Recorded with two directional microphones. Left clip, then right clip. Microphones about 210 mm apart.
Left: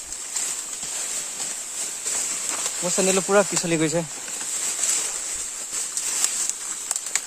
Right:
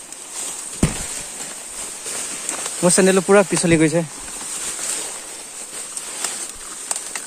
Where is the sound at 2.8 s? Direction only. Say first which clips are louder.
Right 9 dB; 40° right (ahead or behind).